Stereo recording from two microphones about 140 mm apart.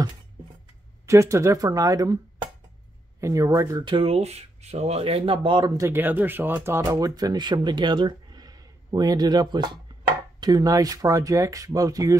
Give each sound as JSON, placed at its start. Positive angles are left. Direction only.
{"t": 1.0, "sound": "speech", "side_deg": -20}
{"t": 3.2, "sound": "speech", "side_deg": -20}
{"t": 5.8, "sound": "speech", "side_deg": -15}